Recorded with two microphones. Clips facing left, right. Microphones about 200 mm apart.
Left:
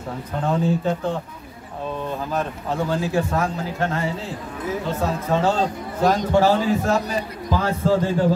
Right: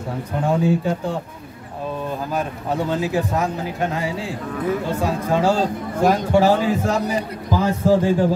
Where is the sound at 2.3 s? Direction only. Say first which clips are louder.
Right 1 dB; 15° right (ahead or behind).